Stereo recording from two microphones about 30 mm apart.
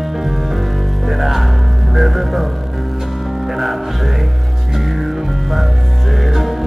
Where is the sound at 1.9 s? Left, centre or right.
Centre.